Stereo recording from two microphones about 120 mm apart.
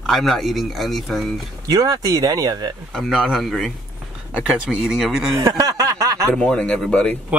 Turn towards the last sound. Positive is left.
turn(degrees=10)  # may be behind; listen again after turning